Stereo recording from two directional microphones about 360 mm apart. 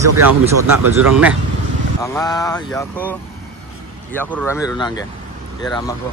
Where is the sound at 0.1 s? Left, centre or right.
Right.